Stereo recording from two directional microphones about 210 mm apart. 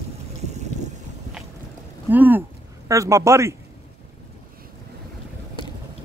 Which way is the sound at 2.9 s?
15° right (ahead or behind).